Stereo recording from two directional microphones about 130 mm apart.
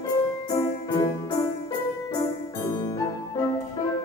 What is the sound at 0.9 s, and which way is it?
Music, 30° left (ahead or behind).